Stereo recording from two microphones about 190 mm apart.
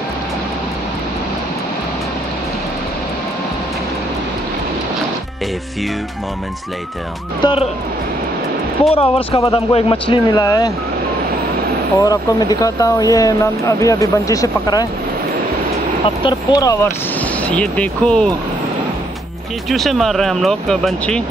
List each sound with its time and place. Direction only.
7.4 s speech: 20° left (ahead or behind)
8.9 s speech: 30° left (ahead or behind)
12.0 s speech: 20° left (ahead or behind)
16.3 s speech: 20° left (ahead or behind)
17.2 s speech: 5° left (ahead or behind)
19.7 s speech: centre (ahead or behind)